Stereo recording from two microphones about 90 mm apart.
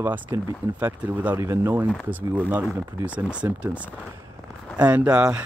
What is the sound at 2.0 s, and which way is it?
Speech, 15° right (ahead or behind).